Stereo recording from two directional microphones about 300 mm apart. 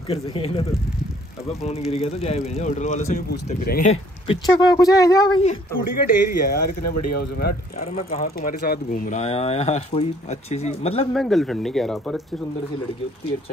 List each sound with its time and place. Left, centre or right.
0.1 s speech: centre
1.9 s speech: centre
5.9 s speech: left
11.1 s speech: centre